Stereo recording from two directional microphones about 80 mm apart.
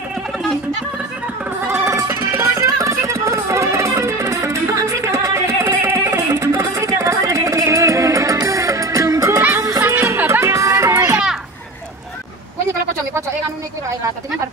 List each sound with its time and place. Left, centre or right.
1.7 s music: right